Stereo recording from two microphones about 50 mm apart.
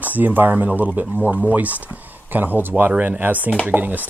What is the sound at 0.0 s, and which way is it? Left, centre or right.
Speech, right.